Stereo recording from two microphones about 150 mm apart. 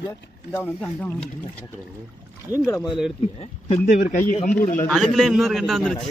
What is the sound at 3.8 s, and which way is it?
Speech, 60° left (ahead or behind).